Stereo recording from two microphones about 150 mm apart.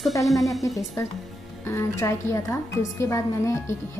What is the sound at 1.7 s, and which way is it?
A woman's voice, 20° left (ahead or behind).